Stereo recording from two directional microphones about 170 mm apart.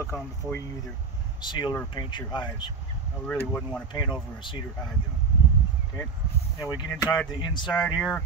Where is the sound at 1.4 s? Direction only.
25° left (ahead or behind).